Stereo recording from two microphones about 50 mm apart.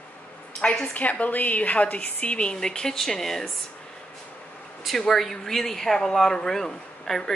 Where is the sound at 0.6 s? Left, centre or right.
Centre.